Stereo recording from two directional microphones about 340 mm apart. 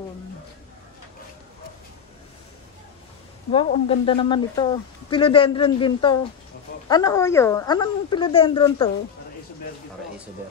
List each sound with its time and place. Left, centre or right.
3.5 s speech: centre